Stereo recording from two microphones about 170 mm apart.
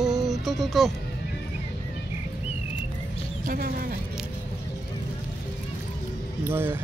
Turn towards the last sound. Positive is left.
turn(degrees=-15)  # may be behind; listen again after turning